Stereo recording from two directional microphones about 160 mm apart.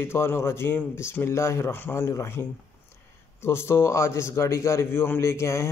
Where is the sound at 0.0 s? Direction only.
15° left (ahead or behind).